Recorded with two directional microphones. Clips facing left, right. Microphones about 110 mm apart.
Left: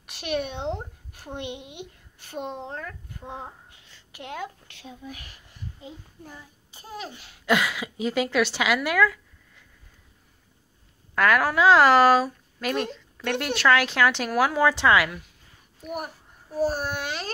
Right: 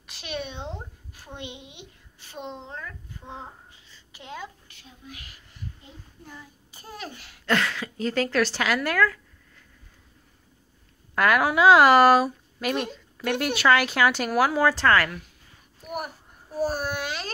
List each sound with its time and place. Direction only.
0.0 s a woman's voice: 60° left (ahead or behind)
3.7 s a sound: 65° left (ahead or behind)
6.7 s a child's voice: 20° left (ahead or behind)
7.4 s a woman's voice: 5° left (ahead or behind)
11.1 s speech: 5° right (ahead or behind)
15.8 s child singing: 5° right (ahead or behind)
16.7 s a child's voice: 35° left (ahead or behind)